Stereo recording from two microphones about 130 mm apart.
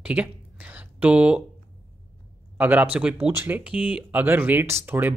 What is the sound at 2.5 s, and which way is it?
Speech, 10° right (ahead or behind).